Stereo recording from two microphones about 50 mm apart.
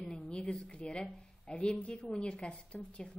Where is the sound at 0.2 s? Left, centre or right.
Centre.